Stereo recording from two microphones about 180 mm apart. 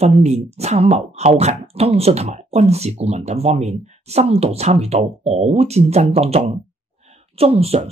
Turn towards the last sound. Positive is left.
turn(degrees=-35)  # may be behind; listen again after turning